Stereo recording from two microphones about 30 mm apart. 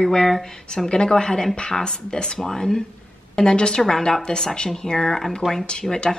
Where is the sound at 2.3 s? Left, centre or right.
Centre.